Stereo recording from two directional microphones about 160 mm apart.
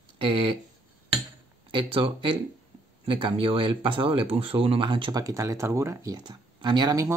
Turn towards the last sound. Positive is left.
turn(degrees=-20)  # may be behind; listen again after turning